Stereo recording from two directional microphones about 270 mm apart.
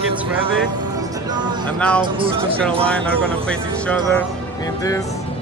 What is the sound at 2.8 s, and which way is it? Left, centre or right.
Speech, centre.